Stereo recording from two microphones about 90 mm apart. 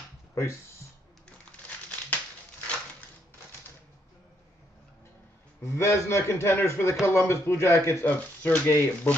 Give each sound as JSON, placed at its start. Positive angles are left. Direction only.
{"t": 0.3, "sound": "a sound", "side_deg": 30}
{"t": 1.5, "sound": "crumpling", "side_deg": 15}
{"t": 5.6, "sound": "a man's voice", "side_deg": 30}